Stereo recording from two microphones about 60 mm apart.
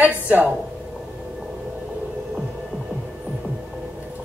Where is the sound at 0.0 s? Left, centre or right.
Right.